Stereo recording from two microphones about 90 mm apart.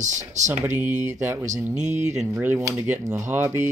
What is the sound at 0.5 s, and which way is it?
Speech, 20° right (ahead or behind).